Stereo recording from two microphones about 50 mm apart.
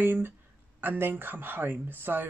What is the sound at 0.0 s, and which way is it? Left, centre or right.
Speech, right.